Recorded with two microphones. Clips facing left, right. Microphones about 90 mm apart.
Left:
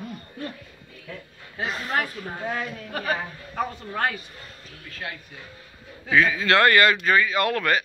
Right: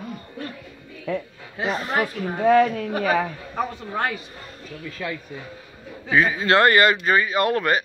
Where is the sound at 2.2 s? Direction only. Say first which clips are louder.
Right 13 dB; 90° right.